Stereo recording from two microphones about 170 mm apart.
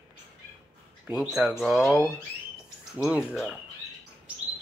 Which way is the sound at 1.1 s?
5° right (ahead or behind).